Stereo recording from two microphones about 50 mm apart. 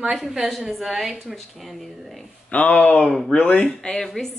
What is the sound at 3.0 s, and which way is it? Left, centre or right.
Speech, centre.